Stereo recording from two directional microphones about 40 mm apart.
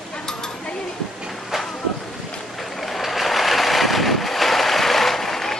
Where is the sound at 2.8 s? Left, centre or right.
Centre.